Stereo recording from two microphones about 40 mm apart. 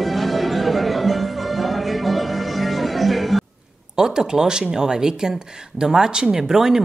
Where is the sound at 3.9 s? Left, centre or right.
Centre.